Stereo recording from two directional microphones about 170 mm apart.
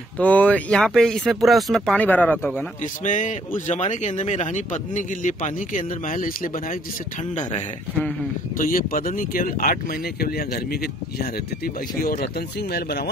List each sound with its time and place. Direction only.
0.2 s speech: 10° left (ahead or behind)
2.8 s speech: 45° left (ahead or behind)
8.5 s speech: 55° left (ahead or behind); by 13.1 s 70° left (ahead or behind)